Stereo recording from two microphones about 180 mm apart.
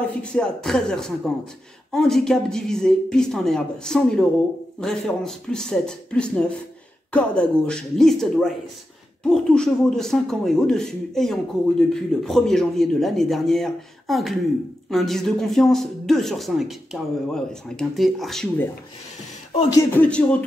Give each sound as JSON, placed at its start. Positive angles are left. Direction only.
{"t": 0.0, "sound": "speech", "side_deg": 5}
{"t": 19.7, "sound": "speech", "side_deg": 15}